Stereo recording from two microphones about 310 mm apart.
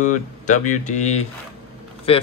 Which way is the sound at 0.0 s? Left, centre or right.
Left.